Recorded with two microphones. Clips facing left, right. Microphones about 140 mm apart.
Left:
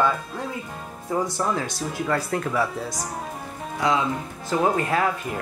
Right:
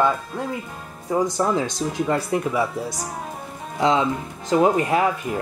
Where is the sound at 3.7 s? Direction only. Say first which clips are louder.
Right 3 dB; 25° right (ahead or behind).